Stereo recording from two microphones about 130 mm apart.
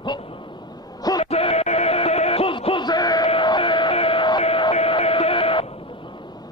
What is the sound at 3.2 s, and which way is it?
Music, 40° left (ahead or behind).